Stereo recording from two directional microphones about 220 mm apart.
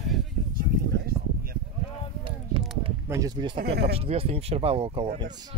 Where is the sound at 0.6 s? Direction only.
40° right (ahead or behind).